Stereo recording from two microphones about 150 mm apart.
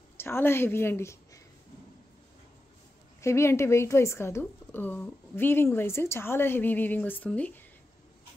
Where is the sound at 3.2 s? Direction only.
20° left (ahead or behind).